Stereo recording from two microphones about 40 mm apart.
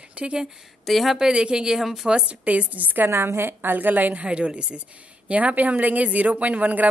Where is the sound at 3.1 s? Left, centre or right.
Right.